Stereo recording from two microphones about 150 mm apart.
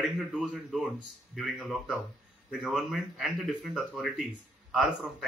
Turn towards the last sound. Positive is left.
turn(degrees=0)  # may be behind; listen again after turning